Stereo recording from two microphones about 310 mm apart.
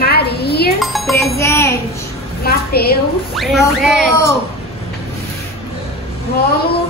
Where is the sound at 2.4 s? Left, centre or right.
Left.